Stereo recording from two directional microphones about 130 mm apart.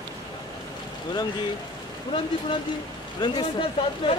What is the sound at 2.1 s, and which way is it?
Speech, 35° left (ahead or behind).